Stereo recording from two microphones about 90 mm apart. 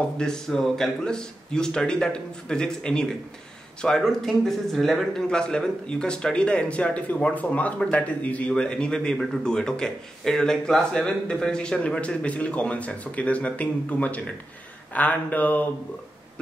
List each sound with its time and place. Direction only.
0.2 s a man's voice: 5° left (ahead or behind)